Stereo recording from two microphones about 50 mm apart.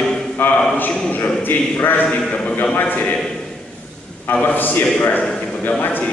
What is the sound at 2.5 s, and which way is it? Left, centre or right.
Speech, left.